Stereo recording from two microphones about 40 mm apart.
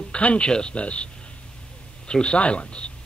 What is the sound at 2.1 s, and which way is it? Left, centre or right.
Speech, left.